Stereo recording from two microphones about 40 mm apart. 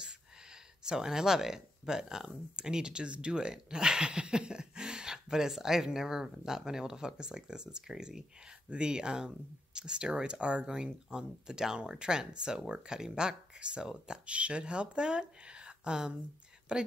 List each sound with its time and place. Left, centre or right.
0.8 s speech: centre